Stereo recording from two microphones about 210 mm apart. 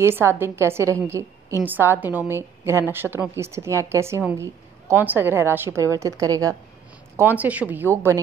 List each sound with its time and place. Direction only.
0.0 s a woman's voice: 10° right (ahead or behind)